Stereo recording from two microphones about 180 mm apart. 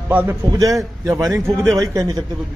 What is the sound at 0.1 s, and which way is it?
A man's voice, 10° right (ahead or behind).